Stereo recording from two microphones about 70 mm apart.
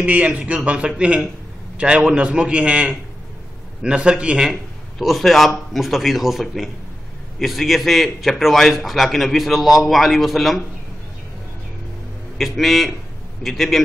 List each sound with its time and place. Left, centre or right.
0.0 s a man's voice: centre
12.4 s a man's voice: centre